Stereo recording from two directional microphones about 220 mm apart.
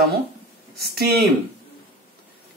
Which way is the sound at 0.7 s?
45° right (ahead or behind).